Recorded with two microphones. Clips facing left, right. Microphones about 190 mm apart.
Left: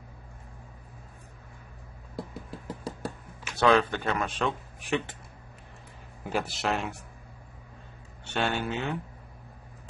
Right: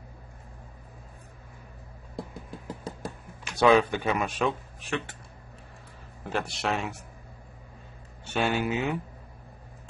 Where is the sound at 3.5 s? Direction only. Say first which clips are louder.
Right 2 dB; 15° right (ahead or behind).